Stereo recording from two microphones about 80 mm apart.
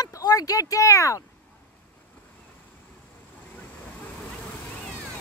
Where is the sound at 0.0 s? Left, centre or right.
Left.